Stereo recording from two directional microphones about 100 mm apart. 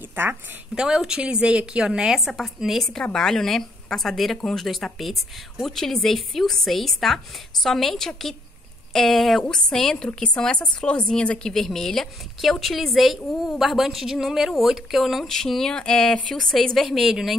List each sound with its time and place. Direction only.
0.1 s a woman's voice: 20° right (ahead or behind)
0.7 s a woman's voice: 5° right (ahead or behind)